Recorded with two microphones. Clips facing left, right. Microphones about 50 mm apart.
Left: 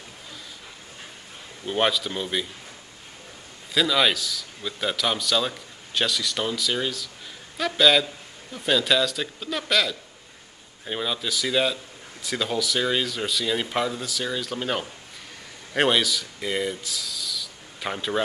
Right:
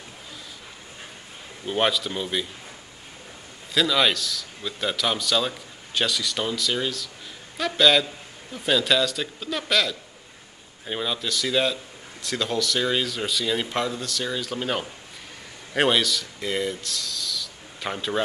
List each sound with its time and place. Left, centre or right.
1.7 s a man's voice: centre
3.7 s a man's voice: centre